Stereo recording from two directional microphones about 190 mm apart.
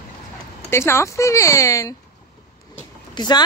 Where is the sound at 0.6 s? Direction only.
15° left (ahead or behind).